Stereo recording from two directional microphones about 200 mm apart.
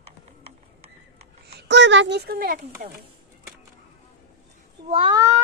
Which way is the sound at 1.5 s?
60° right (ahead or behind).